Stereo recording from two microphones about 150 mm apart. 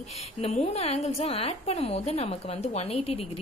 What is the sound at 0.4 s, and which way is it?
A woman's voice, 45° left (ahead or behind).